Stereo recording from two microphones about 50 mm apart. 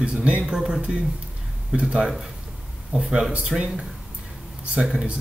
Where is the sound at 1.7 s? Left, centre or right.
Right.